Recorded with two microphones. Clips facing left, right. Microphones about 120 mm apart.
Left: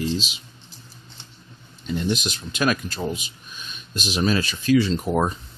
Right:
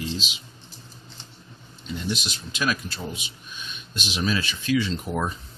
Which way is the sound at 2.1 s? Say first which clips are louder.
Left 5 dB; 50° left (ahead or behind).